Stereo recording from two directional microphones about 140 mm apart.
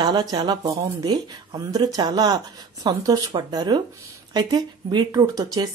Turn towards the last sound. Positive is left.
turn(degrees=-25)  # may be behind; listen again after turning